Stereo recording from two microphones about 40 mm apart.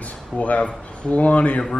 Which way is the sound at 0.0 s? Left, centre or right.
Left.